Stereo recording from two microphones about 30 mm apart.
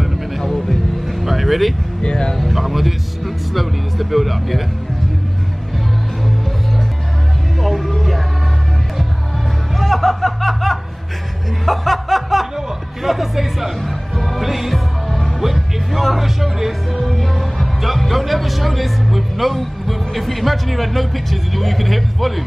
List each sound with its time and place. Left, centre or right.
0.0 s music: centre
0.4 s music: centre
1.2 s vehicle: centre
2.0 s speech: left
2.3 s speech: centre
7.6 s music: centre
9.8 s snicker: centre
13.0 s speech: centre
13.7 s music: centre
14.4 s speech: centre
15.0 s music: centre
15.4 s speech: centre
17.1 s music: centre
17.8 s speech: centre